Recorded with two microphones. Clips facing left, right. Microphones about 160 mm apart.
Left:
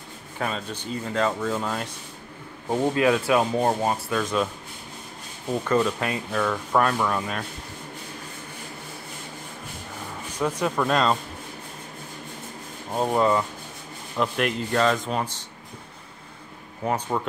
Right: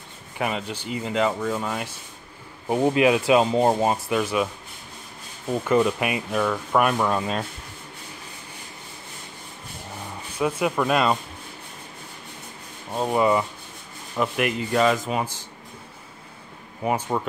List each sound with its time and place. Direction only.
0.4 s speech: 15° right (ahead or behind)
5.5 s speech: 10° right (ahead or behind)
6.8 s rub: 15° right (ahead or behind)
10.4 s speech: 10° right (ahead or behind)
12.9 s speech: 5° left (ahead or behind)
13.2 s speech: 10° right (ahead or behind)
16.8 s speech: 5° right (ahead or behind)